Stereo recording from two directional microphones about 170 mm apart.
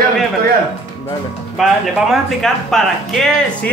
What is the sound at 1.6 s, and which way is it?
Speech, centre (ahead or behind).